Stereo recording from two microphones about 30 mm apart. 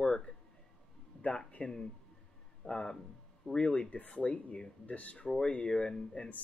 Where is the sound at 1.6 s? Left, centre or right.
Left.